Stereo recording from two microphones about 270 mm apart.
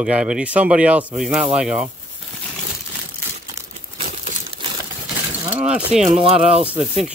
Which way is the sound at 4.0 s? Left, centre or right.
Right.